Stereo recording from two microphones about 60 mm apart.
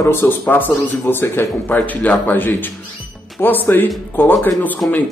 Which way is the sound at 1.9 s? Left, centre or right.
Left.